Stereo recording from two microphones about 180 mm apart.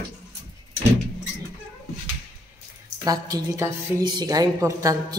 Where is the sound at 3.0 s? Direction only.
20° right (ahead or behind).